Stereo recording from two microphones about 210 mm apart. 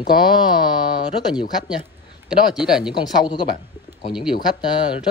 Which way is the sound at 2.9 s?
20° left (ahead or behind).